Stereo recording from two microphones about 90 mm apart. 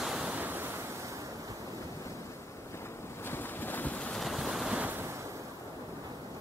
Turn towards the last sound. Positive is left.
turn(degrees=-20)  # may be behind; listen again after turning